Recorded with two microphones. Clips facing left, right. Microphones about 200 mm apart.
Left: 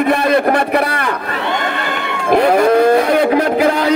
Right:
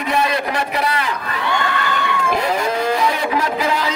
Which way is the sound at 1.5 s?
20° left (ahead or behind).